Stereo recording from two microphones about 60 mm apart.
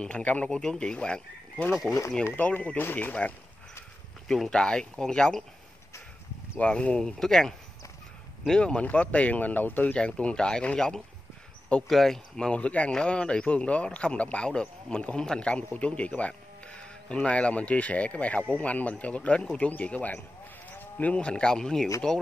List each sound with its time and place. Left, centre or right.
0.0 s speech: left
1.9 s speech: left
2.3 s speech: left
4.3 s speech: centre
6.6 s speech: centre
9.9 s speech: centre